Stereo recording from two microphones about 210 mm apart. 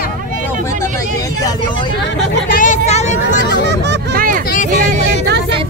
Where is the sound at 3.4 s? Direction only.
55° right (ahead or behind).